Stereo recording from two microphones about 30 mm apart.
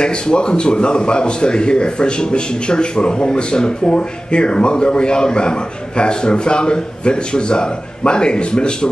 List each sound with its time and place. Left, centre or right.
0.0 s a man's voice: left